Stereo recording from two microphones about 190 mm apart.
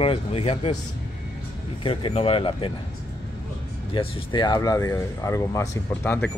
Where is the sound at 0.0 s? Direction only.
30° left (ahead or behind).